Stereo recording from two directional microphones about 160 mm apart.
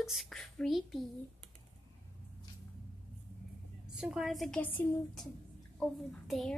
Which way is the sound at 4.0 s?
5° right (ahead or behind).